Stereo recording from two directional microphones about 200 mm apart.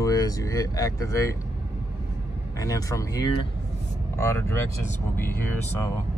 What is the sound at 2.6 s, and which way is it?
Speech, 15° left (ahead or behind).